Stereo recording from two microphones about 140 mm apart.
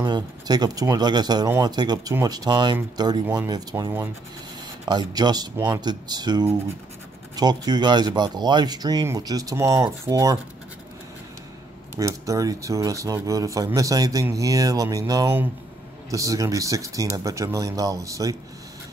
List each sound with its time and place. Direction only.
0.0 s speech: 30° right (ahead or behind)
12.0 s speech: 25° right (ahead or behind)